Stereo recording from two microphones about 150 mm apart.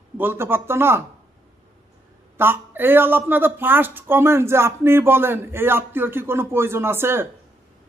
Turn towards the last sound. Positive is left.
turn(degrees=-15)  # may be behind; listen again after turning